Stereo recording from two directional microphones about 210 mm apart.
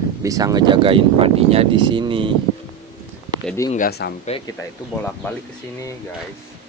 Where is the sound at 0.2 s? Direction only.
15° right (ahead or behind).